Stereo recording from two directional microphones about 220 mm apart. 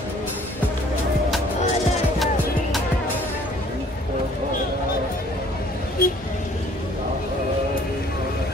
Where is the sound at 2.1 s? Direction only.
Centre (ahead or behind).